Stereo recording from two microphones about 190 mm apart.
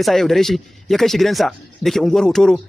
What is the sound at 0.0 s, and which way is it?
Speech, centre (ahead or behind).